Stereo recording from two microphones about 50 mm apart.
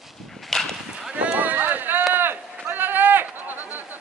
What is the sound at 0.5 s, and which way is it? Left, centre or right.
Livestock, centre.